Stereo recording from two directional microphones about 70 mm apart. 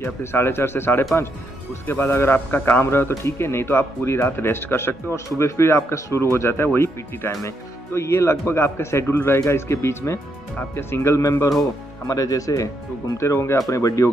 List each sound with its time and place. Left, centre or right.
0.0 s a man's voice: left
12.1 s speech: left